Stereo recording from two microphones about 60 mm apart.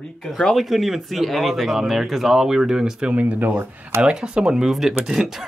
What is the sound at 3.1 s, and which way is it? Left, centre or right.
Speech, right.